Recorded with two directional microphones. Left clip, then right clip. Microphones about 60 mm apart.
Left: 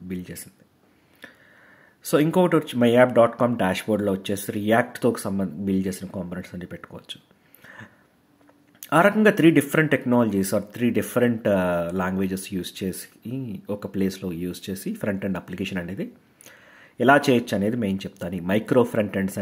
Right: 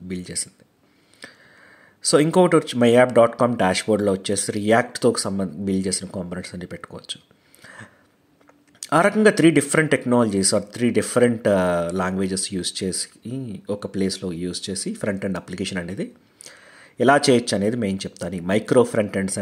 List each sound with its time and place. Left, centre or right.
0.1 s speech: right
2.4 s speech: right
7.6 s a sound: right
9.3 s speech: right
13.7 s speech: centre; by 16.1 s right
16.5 s a sound: right
17.0 s speech: right
18.5 s speech: centre